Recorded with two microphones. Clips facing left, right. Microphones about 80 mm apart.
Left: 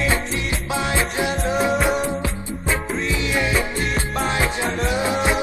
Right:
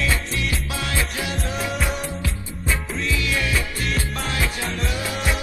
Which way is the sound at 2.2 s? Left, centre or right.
Left.